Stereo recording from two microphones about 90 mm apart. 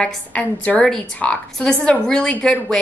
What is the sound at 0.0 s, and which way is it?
A woman's voice, 15° left (ahead or behind).